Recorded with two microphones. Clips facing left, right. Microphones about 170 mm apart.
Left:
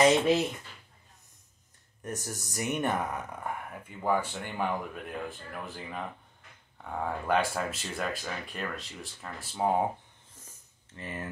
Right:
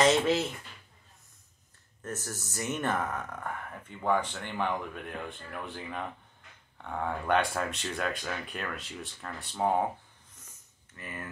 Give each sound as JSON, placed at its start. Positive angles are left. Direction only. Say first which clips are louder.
{"t": 0.0, "sound": "speech", "louder": "left 2 dB", "side_deg": 10}
{"t": 2.0, "sound": "speech", "louder": "left 1 dB", "side_deg": 15}
{"t": 11.0, "sound": "speech", "louder": "left 3 dB", "side_deg": 30}